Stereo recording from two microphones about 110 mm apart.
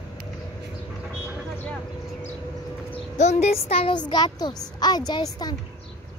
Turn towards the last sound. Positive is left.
turn(degrees=35)  # may be behind; listen again after turning